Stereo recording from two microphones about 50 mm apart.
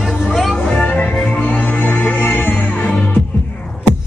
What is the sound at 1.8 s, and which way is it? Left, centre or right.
Music, left.